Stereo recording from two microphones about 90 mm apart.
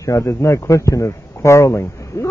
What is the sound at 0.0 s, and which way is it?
A man's voice, 35° left (ahead or behind).